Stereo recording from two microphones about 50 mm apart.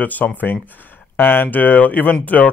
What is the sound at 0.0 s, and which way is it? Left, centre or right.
Speech, left.